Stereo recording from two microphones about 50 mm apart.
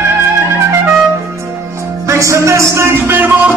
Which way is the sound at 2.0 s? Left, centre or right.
Right.